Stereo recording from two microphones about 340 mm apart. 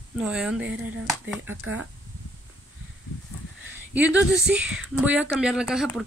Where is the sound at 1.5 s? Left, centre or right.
Right.